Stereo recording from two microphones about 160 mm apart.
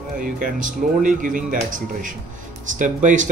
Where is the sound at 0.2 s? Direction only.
60° right (ahead or behind).